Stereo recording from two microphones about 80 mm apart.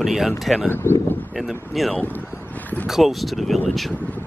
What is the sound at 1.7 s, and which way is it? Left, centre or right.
Speech, centre.